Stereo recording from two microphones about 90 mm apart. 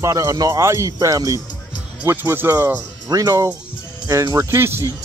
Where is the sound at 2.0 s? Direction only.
25° right (ahead or behind).